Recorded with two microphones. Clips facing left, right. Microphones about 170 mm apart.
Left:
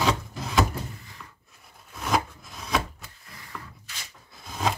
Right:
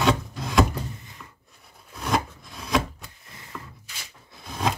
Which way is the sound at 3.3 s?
25° right (ahead or behind).